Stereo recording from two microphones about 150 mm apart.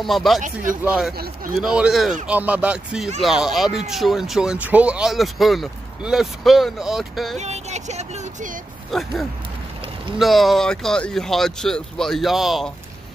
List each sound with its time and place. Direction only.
0.0 s speech: centre (ahead or behind)
0.4 s speech: 60° right (ahead or behind)
1.5 s speech: 5° right (ahead or behind)
7.3 s a sound: 50° right (ahead or behind)
8.9 s speech: centre (ahead or behind)
10.1 s speech: centre (ahead or behind)